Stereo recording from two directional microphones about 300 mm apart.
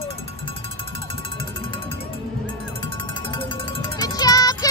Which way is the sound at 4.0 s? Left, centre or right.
Centre.